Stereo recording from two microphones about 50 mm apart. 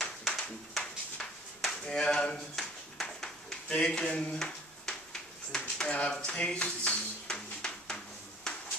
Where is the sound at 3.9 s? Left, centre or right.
Centre.